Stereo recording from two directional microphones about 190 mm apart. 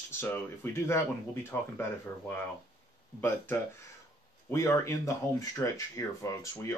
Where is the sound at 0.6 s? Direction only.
10° left (ahead or behind).